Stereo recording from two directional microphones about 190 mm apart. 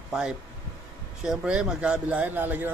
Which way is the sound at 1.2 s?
5° right (ahead or behind).